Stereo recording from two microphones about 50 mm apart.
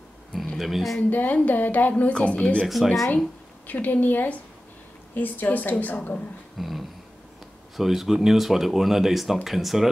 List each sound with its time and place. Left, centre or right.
0.6 s speech: centre
1.1 s speech: left
2.6 s speech: centre
3.6 s speech: left
6.6 s speech: centre